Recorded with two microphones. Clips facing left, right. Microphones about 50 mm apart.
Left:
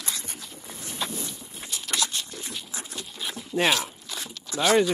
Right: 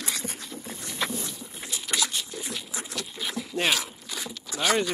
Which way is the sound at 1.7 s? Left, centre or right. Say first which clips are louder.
Even; centre.